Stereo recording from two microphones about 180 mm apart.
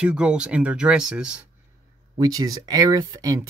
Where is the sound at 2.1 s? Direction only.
20° right (ahead or behind).